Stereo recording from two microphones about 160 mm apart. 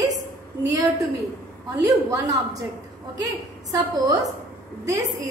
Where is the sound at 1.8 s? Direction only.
20° right (ahead or behind).